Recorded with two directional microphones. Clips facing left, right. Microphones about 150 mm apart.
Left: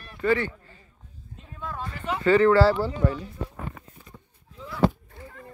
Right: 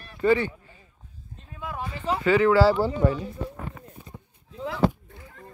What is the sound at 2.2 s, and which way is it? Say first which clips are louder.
Speech: left 1 dB; 5° right (ahead or behind).